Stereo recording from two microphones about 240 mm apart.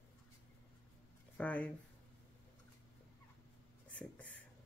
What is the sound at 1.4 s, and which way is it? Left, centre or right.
Speech, centre.